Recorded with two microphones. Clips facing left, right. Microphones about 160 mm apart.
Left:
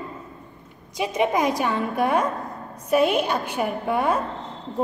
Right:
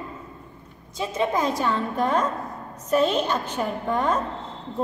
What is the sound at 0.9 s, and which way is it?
A woman's voice, 15° left (ahead or behind).